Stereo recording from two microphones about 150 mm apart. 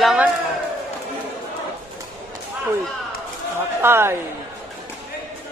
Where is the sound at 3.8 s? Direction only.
15° right (ahead or behind).